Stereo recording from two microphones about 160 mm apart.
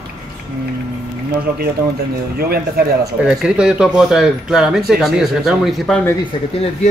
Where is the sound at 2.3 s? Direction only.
75° right (ahead or behind).